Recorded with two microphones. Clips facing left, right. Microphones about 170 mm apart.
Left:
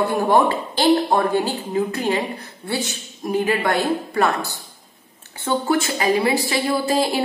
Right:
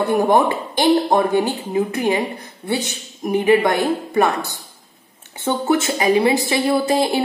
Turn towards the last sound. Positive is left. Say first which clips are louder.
# right 2 dB
turn(degrees=-25)  # may be behind; listen again after turning